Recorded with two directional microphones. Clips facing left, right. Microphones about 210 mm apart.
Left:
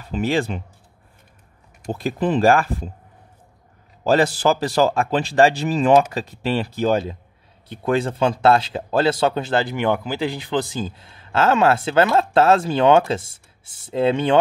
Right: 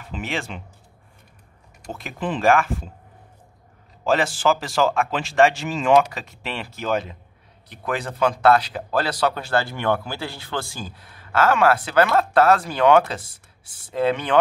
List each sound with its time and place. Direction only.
0.0 s speech: 35° left (ahead or behind)
1.9 s speech: 35° left (ahead or behind)
4.0 s speech: 35° left (ahead or behind)